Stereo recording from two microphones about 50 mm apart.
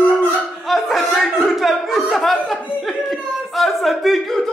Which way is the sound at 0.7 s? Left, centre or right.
Centre.